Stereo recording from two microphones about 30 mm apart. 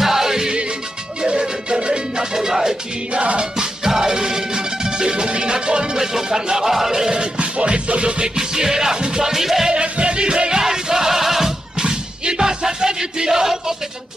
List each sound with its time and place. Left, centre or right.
0.0 s music: centre
1.2 s music: right
2.3 s music: centre
3.1 s music: right
3.5 s music: right
5.9 s music: centre
7.3 s music: right
8.4 s music: centre
9.3 s music: centre
9.7 s music: right; by 11.5 s centre
11.8 s a sound: right